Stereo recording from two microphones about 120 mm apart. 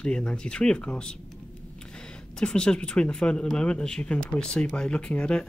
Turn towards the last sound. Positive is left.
turn(degrees=10)  # may be behind; listen again after turning